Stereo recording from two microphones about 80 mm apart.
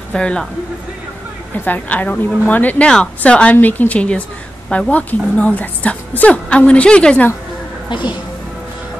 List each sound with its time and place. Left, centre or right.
0.1 s a woman's voice: centre
1.5 s a woman's voice: left
7.9 s speech: left